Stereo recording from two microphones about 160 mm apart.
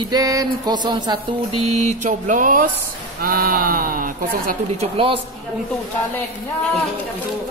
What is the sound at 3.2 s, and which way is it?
Speech, 65° right (ahead or behind).